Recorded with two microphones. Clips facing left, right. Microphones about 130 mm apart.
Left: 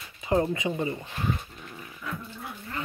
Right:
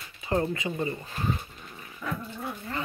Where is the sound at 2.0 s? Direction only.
60° right (ahead or behind).